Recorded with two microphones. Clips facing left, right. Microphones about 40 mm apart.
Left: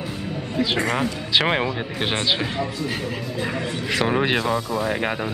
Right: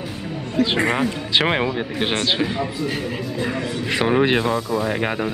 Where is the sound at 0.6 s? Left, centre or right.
Centre.